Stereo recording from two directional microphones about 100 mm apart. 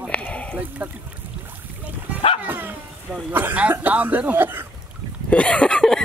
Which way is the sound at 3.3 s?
20° right (ahead or behind).